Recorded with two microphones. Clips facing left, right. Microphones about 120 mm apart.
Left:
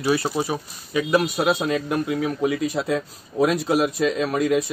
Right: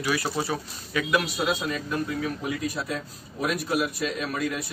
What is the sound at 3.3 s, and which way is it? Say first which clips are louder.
Speech: left 7 dB; 90° left.